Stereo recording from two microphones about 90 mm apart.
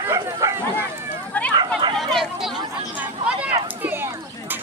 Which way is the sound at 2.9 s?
20° right (ahead or behind).